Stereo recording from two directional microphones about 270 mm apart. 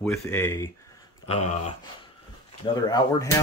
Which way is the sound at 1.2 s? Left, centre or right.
Left.